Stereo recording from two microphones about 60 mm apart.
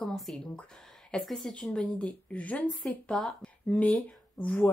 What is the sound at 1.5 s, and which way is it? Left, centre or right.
Speech, centre.